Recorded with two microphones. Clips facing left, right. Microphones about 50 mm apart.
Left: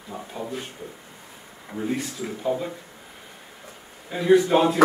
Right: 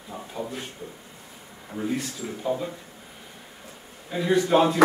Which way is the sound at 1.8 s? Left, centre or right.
Centre.